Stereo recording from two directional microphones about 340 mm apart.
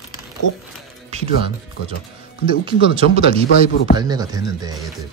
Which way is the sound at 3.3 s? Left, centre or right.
Left.